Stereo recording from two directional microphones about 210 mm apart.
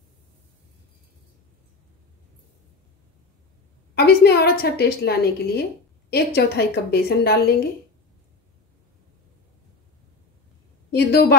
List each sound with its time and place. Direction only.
3.9 s a woman's voice: 50° left (ahead or behind)
10.9 s a woman's voice: 50° left (ahead or behind)